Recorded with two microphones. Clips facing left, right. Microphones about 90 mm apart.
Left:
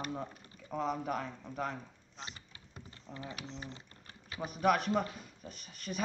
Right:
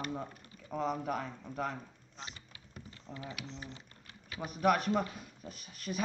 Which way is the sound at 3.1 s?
35° left (ahead or behind).